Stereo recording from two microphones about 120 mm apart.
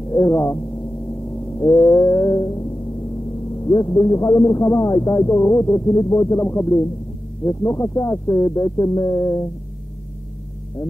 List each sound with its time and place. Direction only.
0.1 s speech: 20° left (ahead or behind)
1.6 s cat: 30° left (ahead or behind)
3.6 s speech: 25° left (ahead or behind)